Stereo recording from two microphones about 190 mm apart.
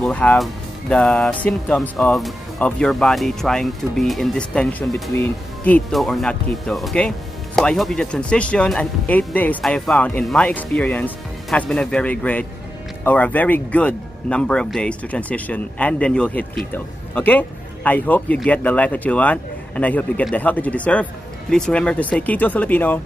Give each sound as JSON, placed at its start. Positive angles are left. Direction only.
{"t": 0.0, "sound": "speech", "side_deg": 5}